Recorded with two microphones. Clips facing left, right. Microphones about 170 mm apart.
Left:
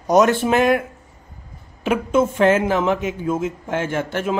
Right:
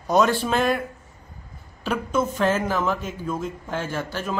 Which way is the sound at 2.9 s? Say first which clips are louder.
Left 6 dB; 85° left.